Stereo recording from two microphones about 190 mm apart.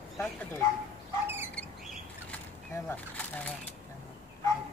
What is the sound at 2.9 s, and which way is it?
Speech, 10° left (ahead or behind).